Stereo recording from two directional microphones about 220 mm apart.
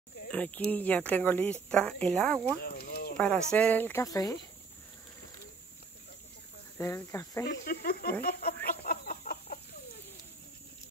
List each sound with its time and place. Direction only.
0.3 s speech: 5° left (ahead or behind)
2.6 s a sound: 45° left (ahead or behind)
3.2 s speech: 5° left (ahead or behind)
6.8 s speech: 10° left (ahead or behind)
7.4 s cricket: 45° left (ahead or behind)
8.2 s speech: 45° left (ahead or behind)
8.8 s chicken: 40° left (ahead or behind)